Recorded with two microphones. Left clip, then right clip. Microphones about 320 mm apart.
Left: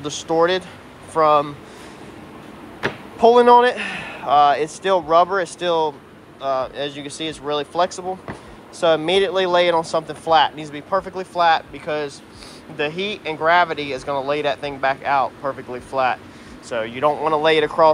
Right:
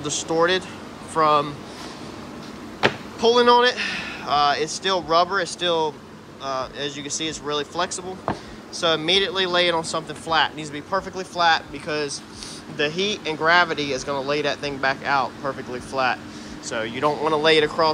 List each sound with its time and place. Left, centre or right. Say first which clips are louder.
0.0 s speech: left 3 dB; centre
3.2 s speech: left 5 dB; centre